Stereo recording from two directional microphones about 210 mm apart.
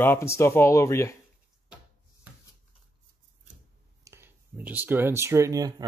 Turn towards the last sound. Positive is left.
turn(degrees=-15)  # may be behind; listen again after turning